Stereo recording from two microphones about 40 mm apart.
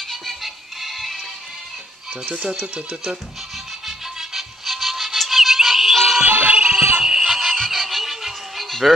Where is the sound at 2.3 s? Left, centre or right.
Centre.